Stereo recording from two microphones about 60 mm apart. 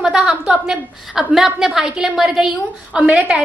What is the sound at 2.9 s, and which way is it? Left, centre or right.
Speech, right.